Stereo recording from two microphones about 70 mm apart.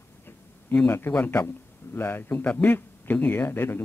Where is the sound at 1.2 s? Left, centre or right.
Centre.